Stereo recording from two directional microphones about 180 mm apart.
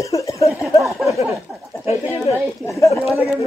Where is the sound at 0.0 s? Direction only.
15° left (ahead or behind).